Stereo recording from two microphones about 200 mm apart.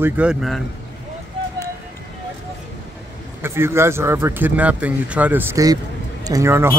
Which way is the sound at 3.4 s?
10° right (ahead or behind).